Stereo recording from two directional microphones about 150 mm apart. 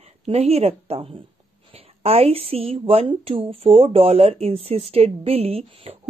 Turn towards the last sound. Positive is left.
turn(degrees=-40)  # may be behind; listen again after turning